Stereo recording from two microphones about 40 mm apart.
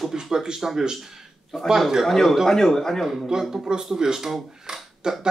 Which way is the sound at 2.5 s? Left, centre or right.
Centre.